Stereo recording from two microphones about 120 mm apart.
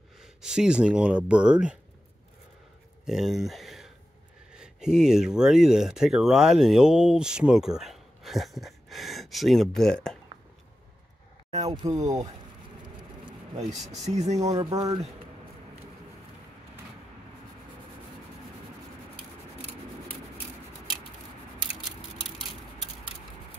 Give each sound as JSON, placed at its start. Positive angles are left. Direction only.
{"t": 0.2, "sound": "speech", "side_deg": -5}
{"t": 3.1, "sound": "speech", "side_deg": -5}
{"t": 11.7, "sound": "speech", "side_deg": -35}
{"t": 14.0, "sound": "speech", "side_deg": -70}
{"t": 14.4, "sound": "speech", "side_deg": -35}